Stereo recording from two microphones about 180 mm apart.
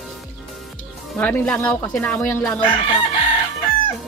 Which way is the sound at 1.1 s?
10° left (ahead or behind).